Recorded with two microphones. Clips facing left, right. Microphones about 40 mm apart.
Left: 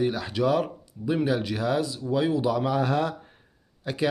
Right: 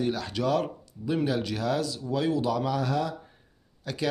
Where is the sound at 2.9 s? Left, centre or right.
Left.